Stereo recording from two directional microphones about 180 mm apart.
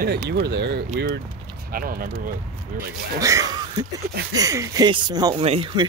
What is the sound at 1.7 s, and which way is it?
Speech, 50° right (ahead or behind).